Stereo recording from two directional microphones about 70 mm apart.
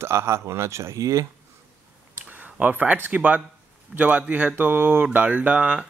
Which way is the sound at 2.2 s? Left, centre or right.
Right.